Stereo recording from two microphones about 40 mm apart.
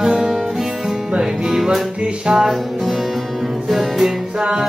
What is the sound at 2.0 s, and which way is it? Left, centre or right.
Music, centre.